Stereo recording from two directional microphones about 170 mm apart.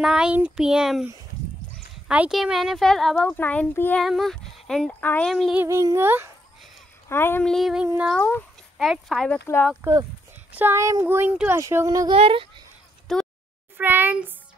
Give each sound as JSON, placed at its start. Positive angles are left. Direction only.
{"t": 0.0, "sound": "speech", "side_deg": -5}
{"t": 2.0, "sound": "a child's voice", "side_deg": -5}
{"t": 5.6, "sound": "speech", "side_deg": -15}
{"t": 7.1, "sound": "speech", "side_deg": 15}
{"t": 8.2, "sound": "a child's voice", "side_deg": 10}
{"t": 8.7, "sound": "speech", "side_deg": 0}
{"t": 9.8, "sound": "speech", "side_deg": -15}
{"t": 12.1, "sound": "a child's voice", "side_deg": -30}
{"t": 13.1, "sound": "a sound", "side_deg": 5}
{"t": 13.7, "sound": "speech", "side_deg": -10}